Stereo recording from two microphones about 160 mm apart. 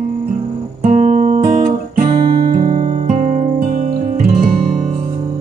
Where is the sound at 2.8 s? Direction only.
45° right (ahead or behind).